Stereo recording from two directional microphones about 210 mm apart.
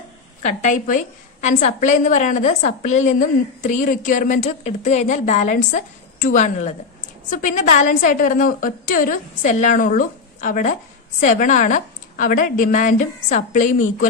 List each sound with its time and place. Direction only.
0.4 s a woman's voice: 35° left (ahead or behind)